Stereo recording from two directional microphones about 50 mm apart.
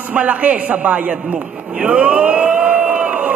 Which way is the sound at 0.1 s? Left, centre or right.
Right.